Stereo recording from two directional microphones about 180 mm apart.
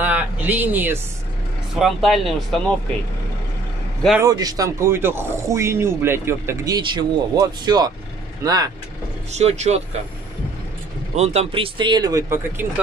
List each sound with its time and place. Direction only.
0.0 s speech: 10° right (ahead or behind)
4.2 s speech: 20° right (ahead or behind)
9.3 s speech: 40° right (ahead or behind)
11.1 s speech: 35° right (ahead or behind); by 12.6 s 15° right (ahead or behind)